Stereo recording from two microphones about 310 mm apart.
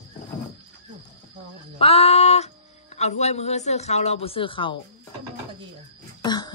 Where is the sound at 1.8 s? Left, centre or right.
Centre.